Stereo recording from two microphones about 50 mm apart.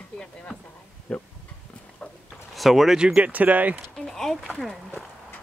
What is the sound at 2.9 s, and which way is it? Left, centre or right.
Speech, right.